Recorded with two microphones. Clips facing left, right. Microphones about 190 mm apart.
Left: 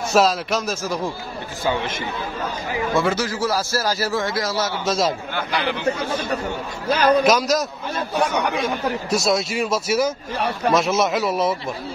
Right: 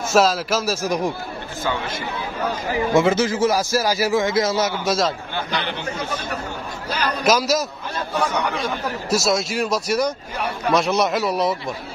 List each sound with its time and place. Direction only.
0.1 s a man's voice: centre (ahead or behind)
0.8 s a man's voice: 15° right (ahead or behind)
1.6 s speech: 15° left (ahead or behind)
2.9 s a man's voice: 20° right (ahead or behind)
6.9 s a man's voice: 50° left (ahead or behind)
7.2 s a man's voice: centre (ahead or behind)